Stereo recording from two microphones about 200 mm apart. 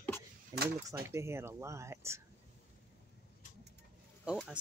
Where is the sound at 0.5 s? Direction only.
20° right (ahead or behind).